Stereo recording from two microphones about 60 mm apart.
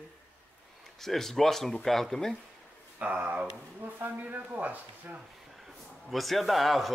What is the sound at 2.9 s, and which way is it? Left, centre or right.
Speech, right.